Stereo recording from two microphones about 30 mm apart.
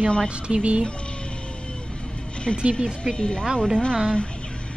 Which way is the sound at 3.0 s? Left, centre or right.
Left.